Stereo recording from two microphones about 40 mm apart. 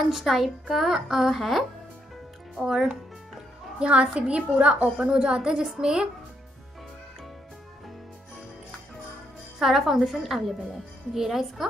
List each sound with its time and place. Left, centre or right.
0.0 s a woman's voice: centre
2.5 s a woman's voice: centre
3.8 s a woman's voice: right
9.6 s a woman's voice: centre